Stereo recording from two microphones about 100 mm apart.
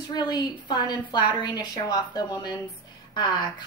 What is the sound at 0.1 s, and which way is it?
A woman's voice, 45° left (ahead or behind).